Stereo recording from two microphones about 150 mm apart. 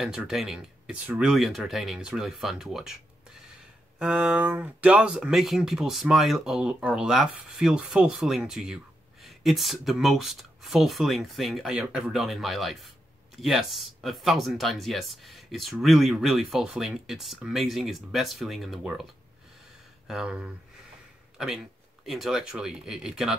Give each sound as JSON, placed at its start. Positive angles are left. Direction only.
{"t": 0.0, "sound": "speech", "side_deg": -5}
{"t": 4.0, "sound": "speech", "side_deg": -10}
{"t": 20.1, "sound": "speech", "side_deg": -5}
{"t": 22.0, "sound": "speech", "side_deg": 0}